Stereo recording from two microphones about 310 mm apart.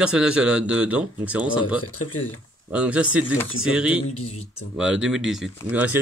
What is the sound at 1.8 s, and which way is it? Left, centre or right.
Speech, left.